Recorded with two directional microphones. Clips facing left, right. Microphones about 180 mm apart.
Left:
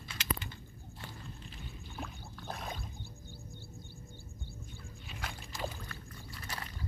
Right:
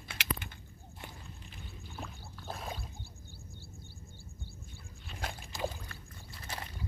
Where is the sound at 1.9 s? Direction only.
Centre (ahead or behind).